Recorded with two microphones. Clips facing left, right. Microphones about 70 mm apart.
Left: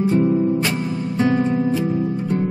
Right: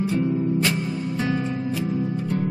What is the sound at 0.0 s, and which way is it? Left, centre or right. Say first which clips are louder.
Music: left 6 dB; left.